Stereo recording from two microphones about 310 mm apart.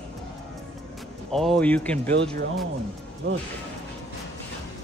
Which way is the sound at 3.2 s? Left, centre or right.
Right.